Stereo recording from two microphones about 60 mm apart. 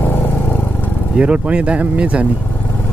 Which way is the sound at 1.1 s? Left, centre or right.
Right.